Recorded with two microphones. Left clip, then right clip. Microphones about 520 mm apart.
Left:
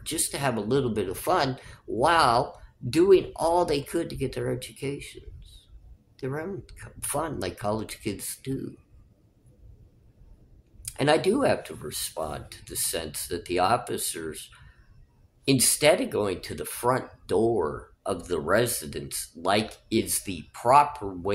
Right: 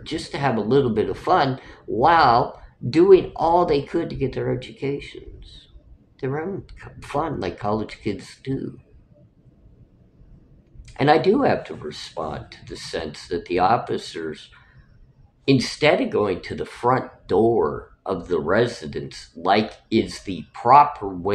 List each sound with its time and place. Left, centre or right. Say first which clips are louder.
0.0 s speech: right 4 dB; left
10.9 s speech: right 6 dB; left